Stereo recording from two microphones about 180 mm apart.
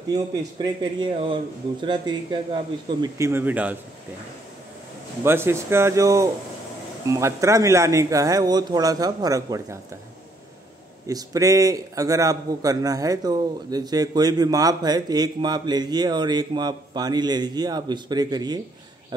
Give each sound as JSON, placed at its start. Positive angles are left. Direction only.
{"t": 0.1, "sound": "a man's voice", "side_deg": -20}
{"t": 5.2, "sound": "speech", "side_deg": -15}
{"t": 11.1, "sound": "a man's voice", "side_deg": -20}